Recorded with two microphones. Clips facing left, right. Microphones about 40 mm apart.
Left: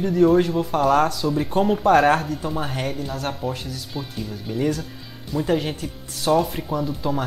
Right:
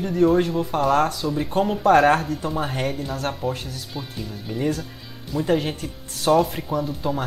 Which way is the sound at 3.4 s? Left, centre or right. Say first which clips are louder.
Right 2 dB; left.